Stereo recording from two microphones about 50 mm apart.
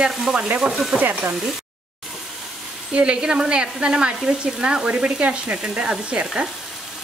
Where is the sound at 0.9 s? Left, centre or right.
Centre.